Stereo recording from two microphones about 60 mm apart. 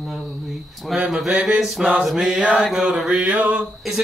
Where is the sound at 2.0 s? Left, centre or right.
Centre.